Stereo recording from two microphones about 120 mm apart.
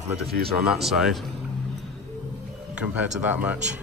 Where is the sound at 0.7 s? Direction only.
Centre (ahead or behind).